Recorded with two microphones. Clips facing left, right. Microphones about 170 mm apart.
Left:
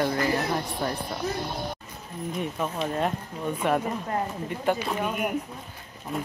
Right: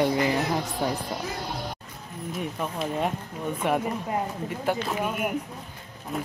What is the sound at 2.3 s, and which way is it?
Speech, 5° right (ahead or behind).